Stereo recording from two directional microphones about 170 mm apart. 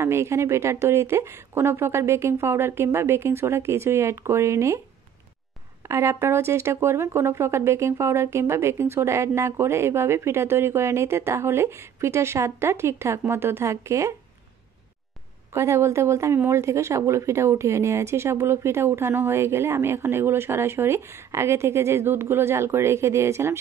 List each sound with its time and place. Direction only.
0.0 s speech: 15° right (ahead or behind)
5.9 s speech: 15° right (ahead or behind)
15.5 s speech: 15° right (ahead or behind)